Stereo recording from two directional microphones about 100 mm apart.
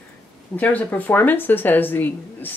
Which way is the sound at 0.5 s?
15° left (ahead or behind).